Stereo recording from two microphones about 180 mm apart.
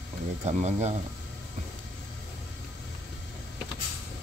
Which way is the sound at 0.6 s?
40° right (ahead or behind).